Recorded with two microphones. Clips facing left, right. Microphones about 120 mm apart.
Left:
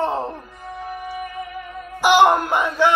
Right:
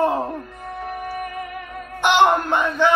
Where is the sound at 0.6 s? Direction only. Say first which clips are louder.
Left 2 dB; 60° right (ahead or behind).